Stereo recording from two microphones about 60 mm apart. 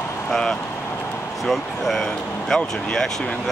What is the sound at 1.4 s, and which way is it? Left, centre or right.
Speech, centre.